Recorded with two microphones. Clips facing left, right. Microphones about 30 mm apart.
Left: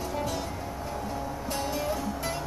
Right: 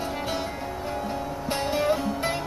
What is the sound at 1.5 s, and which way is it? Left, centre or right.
Music, right.